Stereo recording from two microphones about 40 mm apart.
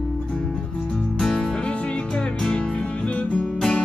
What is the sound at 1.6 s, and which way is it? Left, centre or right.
Music, left.